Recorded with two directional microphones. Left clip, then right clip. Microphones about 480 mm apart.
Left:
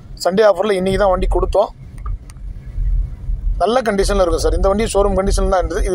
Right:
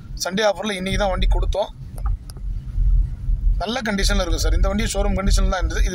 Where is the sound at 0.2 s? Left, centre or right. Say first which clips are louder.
Left 8 dB; right.